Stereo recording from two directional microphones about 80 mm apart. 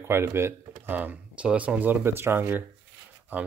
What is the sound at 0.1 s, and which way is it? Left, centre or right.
Speech, right.